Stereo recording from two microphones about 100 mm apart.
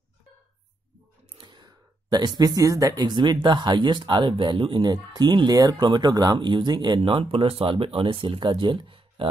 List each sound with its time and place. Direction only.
1.4 s speech: 50° right (ahead or behind)
7.0 s speech: 65° right (ahead or behind)